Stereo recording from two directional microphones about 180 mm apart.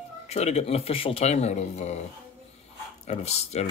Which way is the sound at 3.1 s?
35° left (ahead or behind).